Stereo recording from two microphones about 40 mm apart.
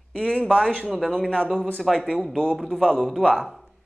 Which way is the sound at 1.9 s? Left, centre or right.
Centre.